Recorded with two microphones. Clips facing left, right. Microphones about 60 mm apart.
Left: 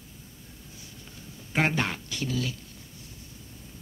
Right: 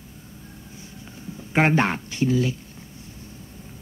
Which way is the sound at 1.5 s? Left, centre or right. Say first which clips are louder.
Right 7 dB; right.